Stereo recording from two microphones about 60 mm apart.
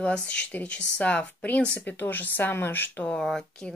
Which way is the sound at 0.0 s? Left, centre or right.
Centre.